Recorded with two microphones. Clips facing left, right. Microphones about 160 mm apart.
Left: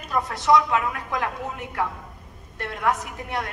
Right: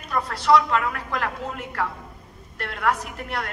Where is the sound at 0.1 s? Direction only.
20° left (ahead or behind).